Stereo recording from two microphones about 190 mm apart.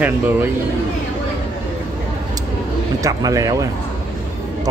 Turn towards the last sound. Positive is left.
turn(degrees=-20)  # may be behind; listen again after turning